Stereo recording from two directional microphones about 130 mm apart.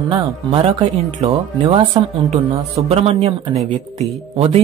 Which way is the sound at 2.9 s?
50° right (ahead or behind).